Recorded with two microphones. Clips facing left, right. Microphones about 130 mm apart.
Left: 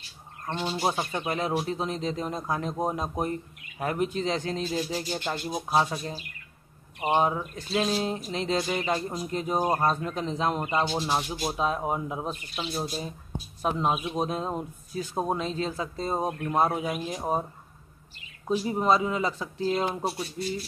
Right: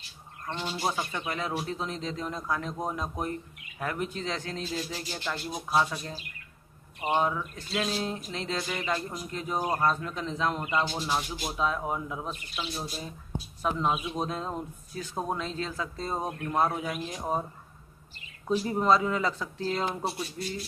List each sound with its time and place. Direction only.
0.7 s a man's voice: 30° left (ahead or behind)
9.6 s a man's voice: 30° left (ahead or behind)
16.9 s speech: 10° left (ahead or behind)
18.5 s speech: 15° left (ahead or behind)